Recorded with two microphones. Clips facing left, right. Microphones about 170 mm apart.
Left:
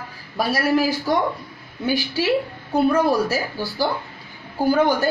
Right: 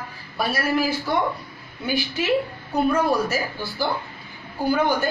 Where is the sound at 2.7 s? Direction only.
30° left (ahead or behind).